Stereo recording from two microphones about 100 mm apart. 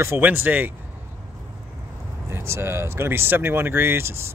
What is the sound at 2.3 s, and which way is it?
Speech, 25° right (ahead or behind).